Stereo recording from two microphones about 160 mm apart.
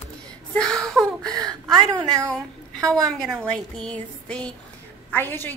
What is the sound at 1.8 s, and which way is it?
Speech, 25° right (ahead or behind).